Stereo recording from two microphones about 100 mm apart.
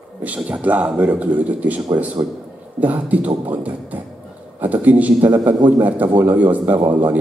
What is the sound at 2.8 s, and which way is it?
Speech, 15° right (ahead or behind).